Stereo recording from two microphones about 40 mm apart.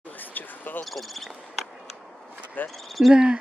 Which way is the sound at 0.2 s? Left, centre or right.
Left.